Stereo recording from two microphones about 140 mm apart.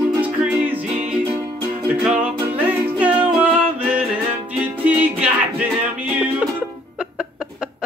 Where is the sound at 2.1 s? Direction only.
50° right (ahead or behind).